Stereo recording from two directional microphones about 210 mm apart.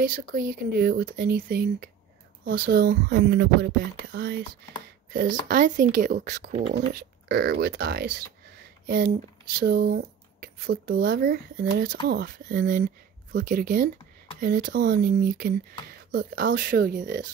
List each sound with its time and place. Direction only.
0.0 s speech: 40° right (ahead or behind)
6.7 s speech: 50° right (ahead or behind)